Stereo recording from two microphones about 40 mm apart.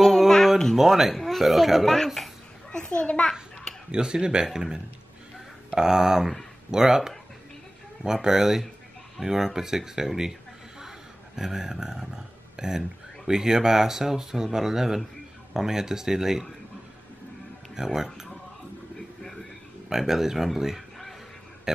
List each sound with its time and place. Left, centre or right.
0.7 s a child's voice: centre
2.8 s a child's voice: left
3.9 s speech: right
5.8 s speech: centre
8.0 s speech: centre
10.8 s a sound: centre
12.5 s speech: centre
17.7 s speech: centre
19.9 s speech: centre